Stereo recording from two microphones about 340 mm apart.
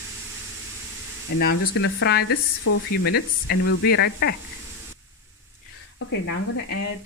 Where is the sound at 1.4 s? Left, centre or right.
Left.